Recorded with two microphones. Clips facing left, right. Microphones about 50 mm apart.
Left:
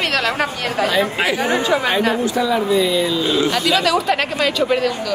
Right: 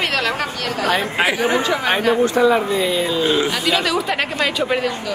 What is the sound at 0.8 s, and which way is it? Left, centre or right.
Speech, right.